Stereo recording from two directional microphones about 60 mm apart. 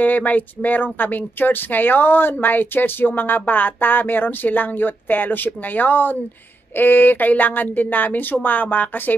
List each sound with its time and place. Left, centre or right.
0.0 s speech: left